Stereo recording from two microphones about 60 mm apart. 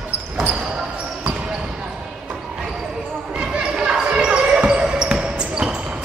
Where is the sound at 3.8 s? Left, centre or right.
Centre.